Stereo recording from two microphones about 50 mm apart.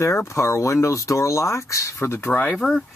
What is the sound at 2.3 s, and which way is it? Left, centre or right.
Speech, left.